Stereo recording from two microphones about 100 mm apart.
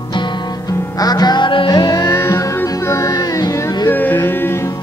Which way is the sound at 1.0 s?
40° left (ahead or behind).